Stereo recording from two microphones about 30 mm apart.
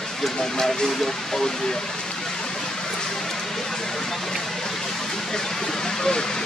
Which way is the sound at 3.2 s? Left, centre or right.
Centre.